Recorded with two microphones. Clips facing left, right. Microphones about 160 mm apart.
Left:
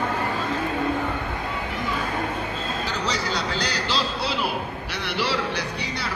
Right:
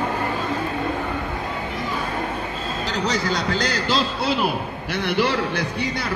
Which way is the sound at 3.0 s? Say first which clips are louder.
Right 5 dB; 45° right (ahead or behind).